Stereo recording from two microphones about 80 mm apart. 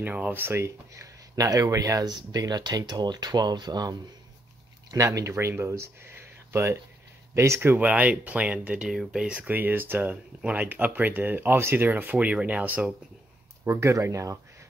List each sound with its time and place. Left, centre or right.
0.0 s speech: right
4.9 s speech: right
7.7 s speech: centre
8.8 s speech: centre
13.7 s speech: right